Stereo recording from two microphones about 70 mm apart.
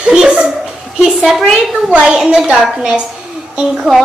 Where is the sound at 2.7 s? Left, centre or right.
Centre.